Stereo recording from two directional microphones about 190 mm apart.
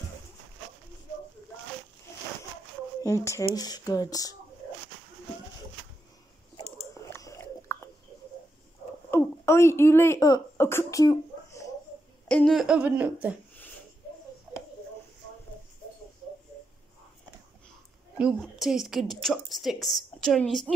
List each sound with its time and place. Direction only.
3.0 s speech: 15° left (ahead or behind)
6.5 s chewing: 15° left (ahead or behind)
9.1 s speech: 15° left (ahead or behind)
12.3 s speech: 5° left (ahead or behind)
18.1 s a woman's voice: 5° right (ahead or behind)